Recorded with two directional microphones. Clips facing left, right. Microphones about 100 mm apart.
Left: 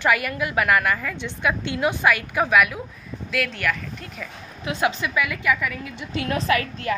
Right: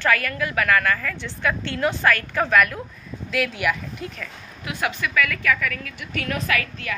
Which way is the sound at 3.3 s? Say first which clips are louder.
Right 2 dB; 5° right (ahead or behind).